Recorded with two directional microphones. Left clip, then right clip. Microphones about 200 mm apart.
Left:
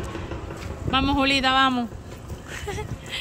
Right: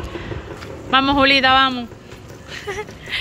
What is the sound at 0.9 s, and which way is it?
Speech, 5° left (ahead or behind).